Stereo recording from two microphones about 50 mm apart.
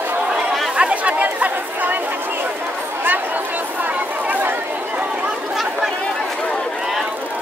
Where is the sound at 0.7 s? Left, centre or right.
Right.